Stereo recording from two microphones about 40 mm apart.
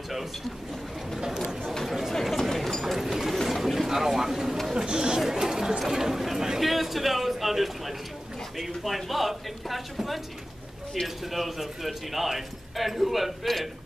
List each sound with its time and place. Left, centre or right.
1.6 s chatter: centre
2.3 s a sound: centre
3.4 s bird: centre
4.7 s speech: centre
11.3 s speech: centre